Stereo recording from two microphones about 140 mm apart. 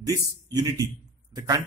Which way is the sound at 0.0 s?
25° right (ahead or behind).